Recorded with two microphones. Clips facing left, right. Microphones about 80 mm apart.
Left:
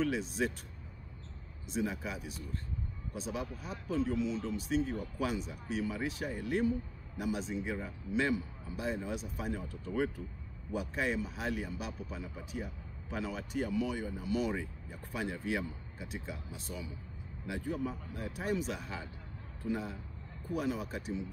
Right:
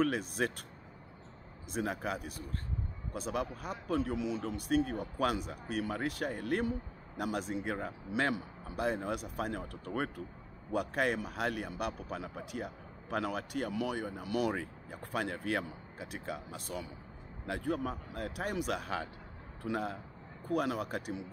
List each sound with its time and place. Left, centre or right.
0.0 s speech: right
1.7 s a man's voice: right